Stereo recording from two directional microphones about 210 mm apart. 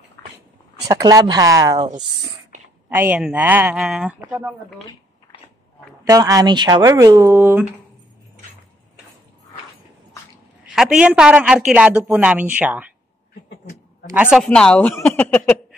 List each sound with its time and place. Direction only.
0.2 s a sound: 10° left (ahead or behind)
0.8 s speech: 15° right (ahead or behind)
2.9 s speech: 10° right (ahead or behind)
6.0 s speech: 15° right (ahead or behind)
10.6 s a woman's voice: 5° right (ahead or behind)
14.1 s a woman's voice: 5° right (ahead or behind)